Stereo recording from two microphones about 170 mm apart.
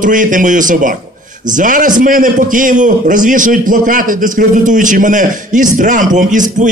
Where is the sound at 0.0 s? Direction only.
50° right (ahead or behind).